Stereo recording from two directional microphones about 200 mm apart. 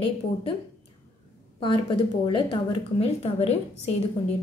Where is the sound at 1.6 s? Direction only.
25° left (ahead or behind).